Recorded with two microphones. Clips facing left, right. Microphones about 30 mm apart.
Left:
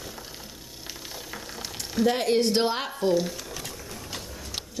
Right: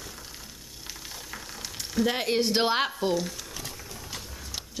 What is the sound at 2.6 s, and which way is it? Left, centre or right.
Speech, right.